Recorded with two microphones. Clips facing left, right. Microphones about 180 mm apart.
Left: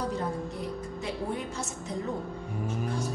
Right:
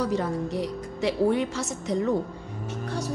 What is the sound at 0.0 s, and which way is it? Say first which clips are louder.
A woman's voice: right 5 dB; 90° right.